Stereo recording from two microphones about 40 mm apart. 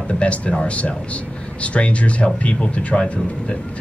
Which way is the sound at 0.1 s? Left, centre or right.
Left.